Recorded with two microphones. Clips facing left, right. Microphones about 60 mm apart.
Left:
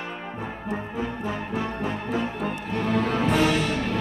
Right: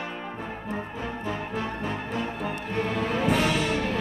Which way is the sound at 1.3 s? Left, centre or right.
Centre.